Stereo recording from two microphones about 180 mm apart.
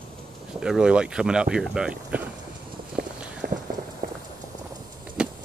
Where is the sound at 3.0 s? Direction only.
55° right (ahead or behind).